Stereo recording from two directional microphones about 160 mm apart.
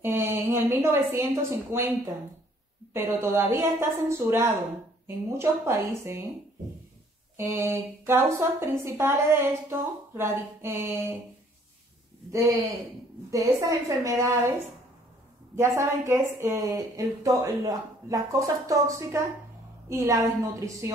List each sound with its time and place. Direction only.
0.0 s a woman's voice: 15° right (ahead or behind)
2.9 s a woman's voice: 15° right (ahead or behind)
7.3 s a woman's voice: 15° right (ahead or behind)
12.3 s a woman's voice: 20° right (ahead or behind)
15.5 s a woman's voice: 15° right (ahead or behind)